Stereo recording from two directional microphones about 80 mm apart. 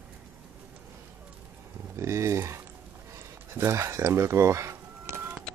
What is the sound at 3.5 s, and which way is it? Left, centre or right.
Bird, right.